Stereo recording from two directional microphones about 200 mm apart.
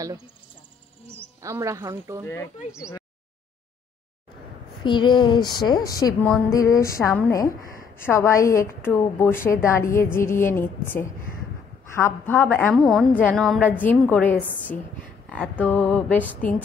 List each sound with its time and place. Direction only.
1.4 s a woman's voice: 15° right (ahead or behind)
2.2 s a woman's voice: 10° left (ahead or behind)
4.8 s a woman's voice: 25° left (ahead or behind)
15.2 s a sound: 5° left (ahead or behind)
15.6 s a woman's voice: 10° left (ahead or behind)